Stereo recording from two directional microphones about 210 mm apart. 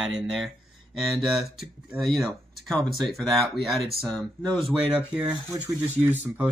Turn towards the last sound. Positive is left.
turn(degrees=-10)  # may be behind; listen again after turning